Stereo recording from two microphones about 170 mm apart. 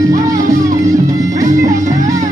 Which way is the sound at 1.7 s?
50° right (ahead or behind).